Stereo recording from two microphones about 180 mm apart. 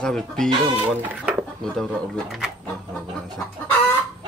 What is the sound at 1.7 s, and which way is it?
Speech, 5° left (ahead or behind).